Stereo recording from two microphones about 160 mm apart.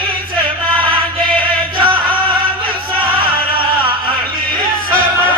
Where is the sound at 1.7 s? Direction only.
35° right (ahead or behind).